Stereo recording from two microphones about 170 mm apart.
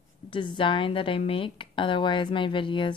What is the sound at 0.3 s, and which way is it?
Speech, 30° left (ahead or behind).